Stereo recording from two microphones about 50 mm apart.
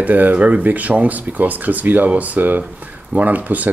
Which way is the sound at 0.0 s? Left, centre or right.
Right.